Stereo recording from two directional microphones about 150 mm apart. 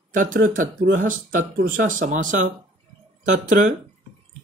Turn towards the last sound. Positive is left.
turn(degrees=-55)  # may be behind; listen again after turning